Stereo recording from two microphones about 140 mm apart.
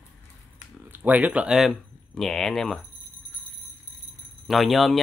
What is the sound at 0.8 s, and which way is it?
Speech, 15° right (ahead or behind).